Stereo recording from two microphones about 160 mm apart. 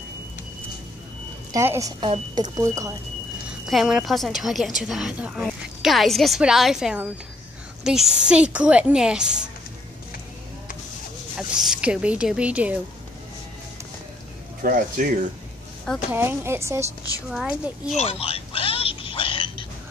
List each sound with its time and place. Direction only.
1.5 s speech: 20° right (ahead or behind)
3.6 s a woman's voice: 5° right (ahead or behind)
11.3 s speech: 5° right (ahead or behind)
14.6 s speech: 60° right (ahead or behind)
16.1 s speech: 15° right (ahead or behind)
17.3 s a woman's voice: 5° right (ahead or behind)
17.9 s a sound: 40° left (ahead or behind)